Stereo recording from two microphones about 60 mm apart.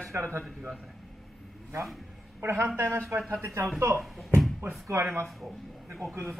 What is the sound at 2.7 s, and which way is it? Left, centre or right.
Speech, right.